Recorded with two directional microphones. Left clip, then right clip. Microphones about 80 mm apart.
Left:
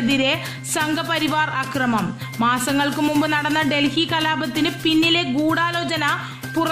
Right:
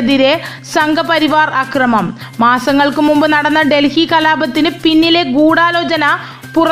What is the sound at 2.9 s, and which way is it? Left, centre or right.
Music, centre.